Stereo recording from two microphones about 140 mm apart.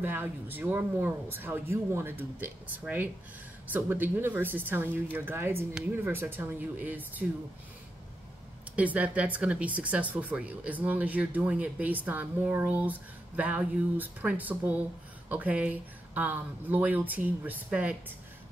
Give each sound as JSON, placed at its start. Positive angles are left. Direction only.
{"t": 0.0, "sound": "speech", "side_deg": -15}
{"t": 8.7, "sound": "speech", "side_deg": -10}